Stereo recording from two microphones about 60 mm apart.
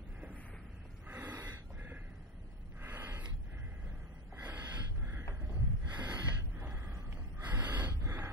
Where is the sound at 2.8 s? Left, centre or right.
Right.